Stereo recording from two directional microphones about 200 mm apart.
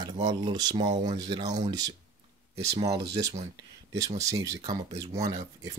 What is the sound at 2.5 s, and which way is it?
Speech, 30° right (ahead or behind).